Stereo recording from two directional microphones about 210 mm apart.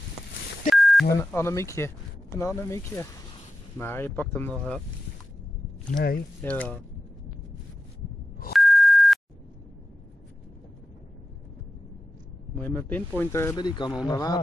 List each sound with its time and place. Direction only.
0.7 s telephone dialing: centre (ahead or behind)
1.1 s speech: 15° left (ahead or behind)
5.9 s speech: 40° left (ahead or behind)
6.4 s speech: 5° left (ahead or behind)
8.5 s beep: centre (ahead or behind)
12.5 s speech: 10° left (ahead or behind)